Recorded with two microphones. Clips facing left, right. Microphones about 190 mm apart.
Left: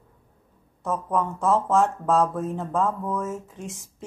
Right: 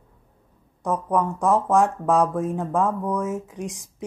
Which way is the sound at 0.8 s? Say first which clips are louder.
Right 3 dB; 15° right (ahead or behind).